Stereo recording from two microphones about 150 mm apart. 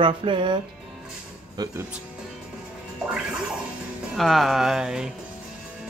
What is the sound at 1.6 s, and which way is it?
Speech, 25° right (ahead or behind).